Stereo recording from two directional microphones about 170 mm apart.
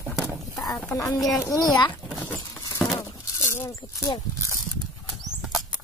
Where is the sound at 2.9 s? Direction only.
20° left (ahead or behind).